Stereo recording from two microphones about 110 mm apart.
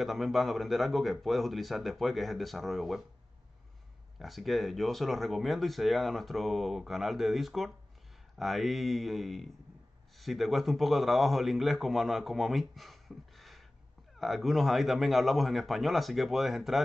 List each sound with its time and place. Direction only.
0.0 s speech: centre (ahead or behind)
4.2 s speech: centre (ahead or behind)